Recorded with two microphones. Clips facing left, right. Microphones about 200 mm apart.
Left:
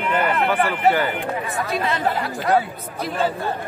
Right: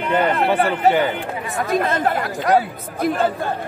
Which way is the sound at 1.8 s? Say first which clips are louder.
Right 2 dB; 50° right (ahead or behind).